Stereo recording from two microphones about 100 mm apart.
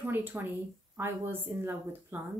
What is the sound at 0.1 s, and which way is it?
Speech, 20° right (ahead or behind).